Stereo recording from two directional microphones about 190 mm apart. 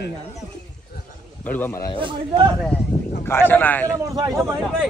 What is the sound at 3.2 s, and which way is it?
Speech, 10° left (ahead or behind).